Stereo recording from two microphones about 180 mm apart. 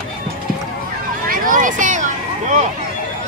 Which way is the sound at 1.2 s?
50° right (ahead or behind).